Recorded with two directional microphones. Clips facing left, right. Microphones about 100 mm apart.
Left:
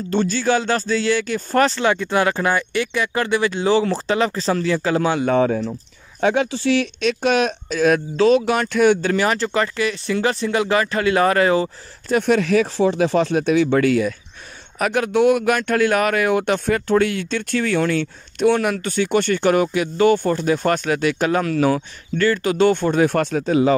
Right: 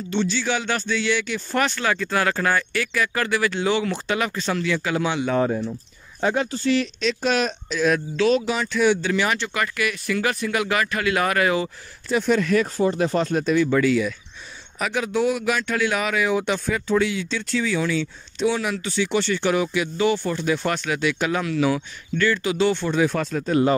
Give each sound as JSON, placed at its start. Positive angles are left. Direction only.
{"t": 0.1, "sound": "speech", "side_deg": 45}
{"t": 1.8, "sound": "speech", "side_deg": 20}
{"t": 5.3, "sound": "speech", "side_deg": 80}
{"t": 12.1, "sound": "speech", "side_deg": 65}
{"t": 23.1, "sound": "speech", "side_deg": 80}